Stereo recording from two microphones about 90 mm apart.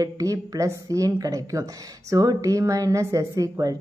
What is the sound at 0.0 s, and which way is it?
Speech, 40° right (ahead or behind).